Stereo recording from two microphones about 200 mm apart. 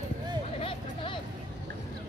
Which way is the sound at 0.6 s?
25° left (ahead or behind).